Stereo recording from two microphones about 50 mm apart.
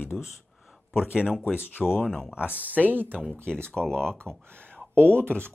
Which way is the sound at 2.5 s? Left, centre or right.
Right.